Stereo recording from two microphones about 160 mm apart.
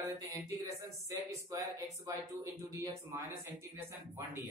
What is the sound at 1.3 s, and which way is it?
Speech, 20° right (ahead or behind).